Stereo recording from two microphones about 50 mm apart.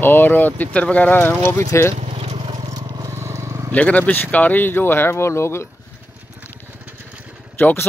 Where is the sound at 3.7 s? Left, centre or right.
Left.